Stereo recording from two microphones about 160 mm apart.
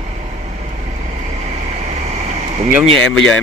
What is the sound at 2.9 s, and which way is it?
Speech, 5° left (ahead or behind).